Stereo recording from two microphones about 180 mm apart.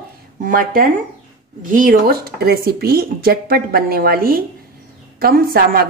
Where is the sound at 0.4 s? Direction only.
50° right (ahead or behind).